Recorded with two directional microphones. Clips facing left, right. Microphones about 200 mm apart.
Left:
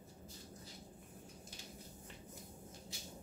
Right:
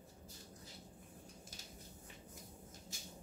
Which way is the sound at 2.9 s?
45° right (ahead or behind).